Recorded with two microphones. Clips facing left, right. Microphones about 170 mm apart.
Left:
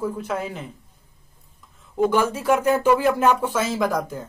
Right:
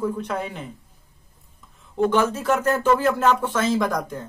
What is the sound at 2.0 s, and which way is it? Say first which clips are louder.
Speech: even; 10° left (ahead or behind).